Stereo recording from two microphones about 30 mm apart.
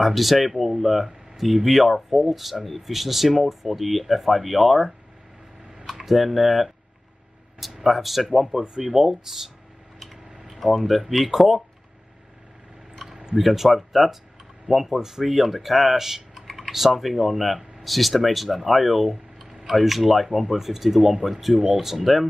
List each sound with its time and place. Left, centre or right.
0.0 s speech: centre
7.8 s speech: centre
10.5 s speech: centre
13.1 s a sound: right
13.4 s speech: centre
15.0 s speech: centre